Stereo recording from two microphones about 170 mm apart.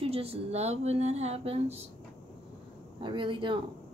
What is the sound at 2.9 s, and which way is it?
Speech, 30° right (ahead or behind).